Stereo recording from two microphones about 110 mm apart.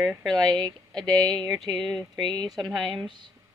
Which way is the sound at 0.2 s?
5° left (ahead or behind).